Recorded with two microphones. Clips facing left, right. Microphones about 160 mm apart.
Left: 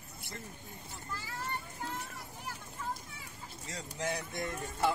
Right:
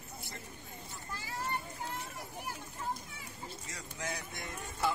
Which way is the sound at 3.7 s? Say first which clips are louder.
Left 6 dB; 30° left (ahead or behind).